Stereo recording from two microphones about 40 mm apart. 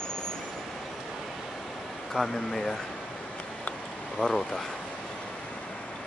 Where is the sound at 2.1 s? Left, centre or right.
Centre.